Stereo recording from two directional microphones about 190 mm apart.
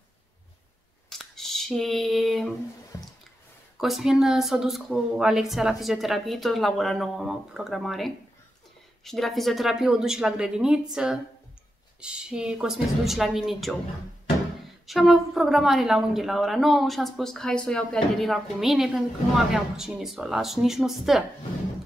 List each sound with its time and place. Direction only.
1.1 s scissors: centre (ahead or behind)
2.9 s squish: 15° left (ahead or behind)
3.7 s a woman's voice: centre (ahead or behind)
14.9 s a woman's voice: centre (ahead or behind)